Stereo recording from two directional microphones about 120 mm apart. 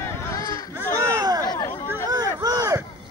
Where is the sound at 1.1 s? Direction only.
30° right (ahead or behind).